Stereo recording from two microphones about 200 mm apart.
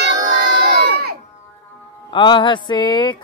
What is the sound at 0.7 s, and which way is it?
Crowd, 50° right (ahead or behind).